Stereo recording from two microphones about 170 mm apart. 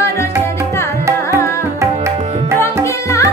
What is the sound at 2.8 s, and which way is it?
Tabla, 20° left (ahead or behind).